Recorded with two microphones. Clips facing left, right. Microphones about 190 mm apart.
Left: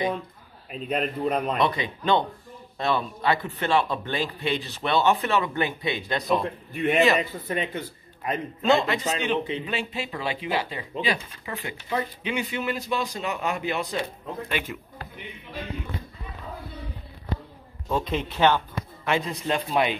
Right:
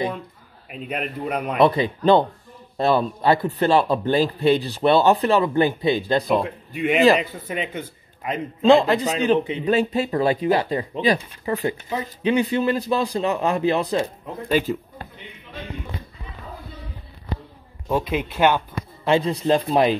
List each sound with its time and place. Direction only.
0.7 s speech: 10° right (ahead or behind)
1.6 s a man's voice: 35° right (ahead or behind)
6.4 s speech: 5° right (ahead or behind)
7.2 s a man's voice: 20° right (ahead or behind)
8.6 s a man's voice: 35° right (ahead or behind)
17.8 s speech: 10° right (ahead or behind)
19.0 s a man's voice: 30° right (ahead or behind)